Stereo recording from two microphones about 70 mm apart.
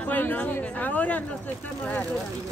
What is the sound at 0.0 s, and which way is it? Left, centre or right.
Speech, left.